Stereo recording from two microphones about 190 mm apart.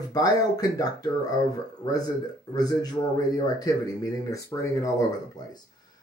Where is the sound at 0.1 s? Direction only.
20° left (ahead or behind).